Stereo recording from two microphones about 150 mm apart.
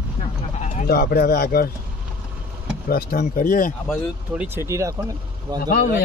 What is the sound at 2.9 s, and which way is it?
Speech, 80° left.